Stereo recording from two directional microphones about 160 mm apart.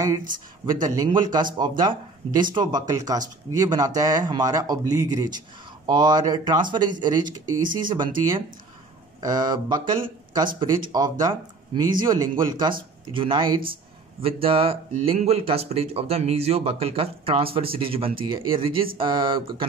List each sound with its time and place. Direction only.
0.7 s speech: 25° right (ahead or behind)